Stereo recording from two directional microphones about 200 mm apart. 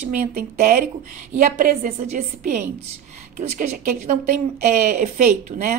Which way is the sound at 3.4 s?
40° right (ahead or behind).